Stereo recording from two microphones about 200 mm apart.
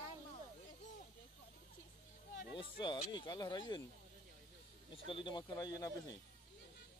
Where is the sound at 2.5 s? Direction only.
25° left (ahead or behind).